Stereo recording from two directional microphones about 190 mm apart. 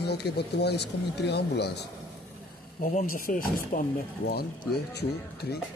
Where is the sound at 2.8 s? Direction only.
45° left (ahead or behind).